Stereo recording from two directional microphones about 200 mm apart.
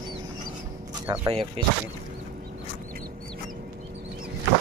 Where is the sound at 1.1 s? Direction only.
20° right (ahead or behind).